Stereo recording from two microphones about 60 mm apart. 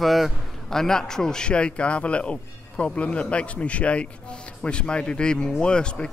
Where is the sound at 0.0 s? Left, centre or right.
Centre.